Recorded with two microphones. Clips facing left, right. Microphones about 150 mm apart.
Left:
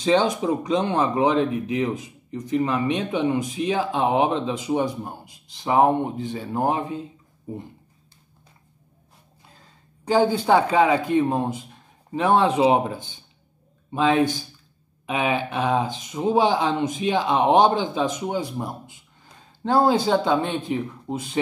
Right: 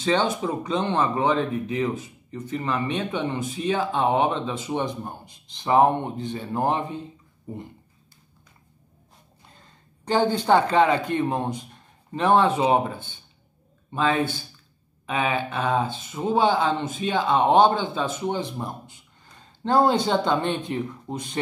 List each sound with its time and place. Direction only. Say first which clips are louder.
0.0 s speech: left 3 dB; 10° left (ahead or behind)
10.0 s speech: left 2 dB; 10° left (ahead or behind)